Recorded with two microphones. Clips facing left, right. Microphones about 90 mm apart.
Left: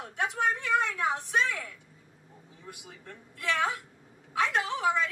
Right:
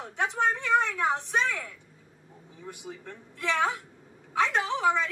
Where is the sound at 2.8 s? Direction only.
25° right (ahead or behind).